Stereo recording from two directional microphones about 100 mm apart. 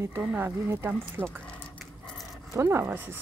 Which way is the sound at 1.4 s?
10° left (ahead or behind).